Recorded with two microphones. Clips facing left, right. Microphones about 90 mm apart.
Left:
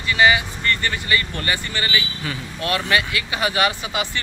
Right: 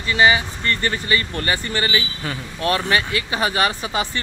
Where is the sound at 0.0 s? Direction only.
30° right (ahead or behind).